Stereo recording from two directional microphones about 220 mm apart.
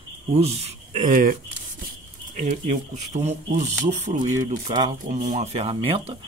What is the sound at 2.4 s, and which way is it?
Speech, 35° right (ahead or behind).